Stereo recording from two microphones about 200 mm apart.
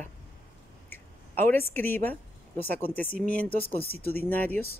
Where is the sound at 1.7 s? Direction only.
10° left (ahead or behind).